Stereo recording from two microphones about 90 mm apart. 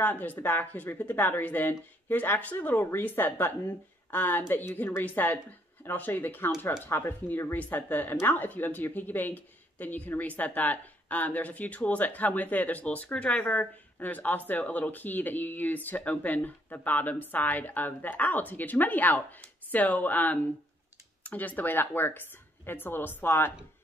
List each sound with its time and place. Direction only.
0.0 s speech: 20° left (ahead or behind)